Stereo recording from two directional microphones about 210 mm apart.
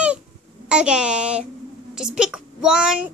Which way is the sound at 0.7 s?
5° right (ahead or behind).